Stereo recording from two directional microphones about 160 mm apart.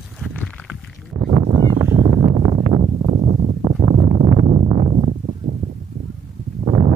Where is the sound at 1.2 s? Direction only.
35° right (ahead or behind).